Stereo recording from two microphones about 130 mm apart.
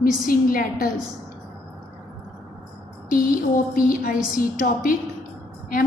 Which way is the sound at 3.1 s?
90° left.